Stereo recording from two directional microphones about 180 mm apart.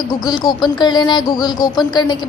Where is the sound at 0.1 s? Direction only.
25° left (ahead or behind).